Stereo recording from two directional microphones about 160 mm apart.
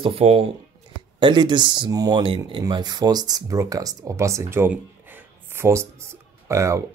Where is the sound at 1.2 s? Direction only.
30° right (ahead or behind).